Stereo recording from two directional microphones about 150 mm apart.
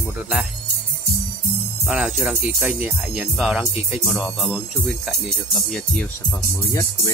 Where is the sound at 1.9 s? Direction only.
5° right (ahead or behind).